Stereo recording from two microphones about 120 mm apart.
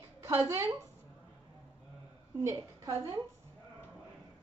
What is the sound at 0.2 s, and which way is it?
Speech, 25° right (ahead or behind).